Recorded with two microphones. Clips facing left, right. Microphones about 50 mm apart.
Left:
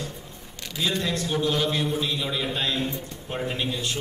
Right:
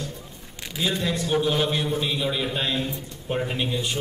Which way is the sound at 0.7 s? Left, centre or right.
Centre.